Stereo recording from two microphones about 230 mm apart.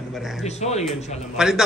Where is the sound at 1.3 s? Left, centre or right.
Centre.